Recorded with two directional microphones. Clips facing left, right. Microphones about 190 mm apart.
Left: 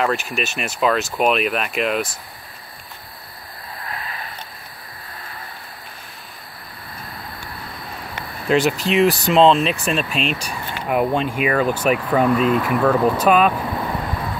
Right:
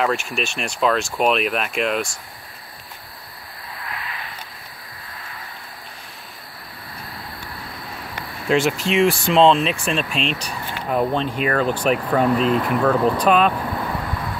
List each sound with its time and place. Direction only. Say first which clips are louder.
0.0 s speech: even; centre (ahead or behind)
3.8 s a sound: left 1 dB; 35° left (ahead or behind)
8.5 s speech: left 1 dB; centre (ahead or behind)
9.0 s speech: left 1 dB; 40° left (ahead or behind)
9.3 s speech: left 1 dB; centre (ahead or behind)